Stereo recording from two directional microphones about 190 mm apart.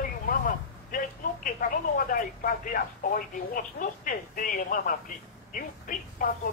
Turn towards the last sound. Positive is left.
turn(degrees=45)  # may be behind; listen again after turning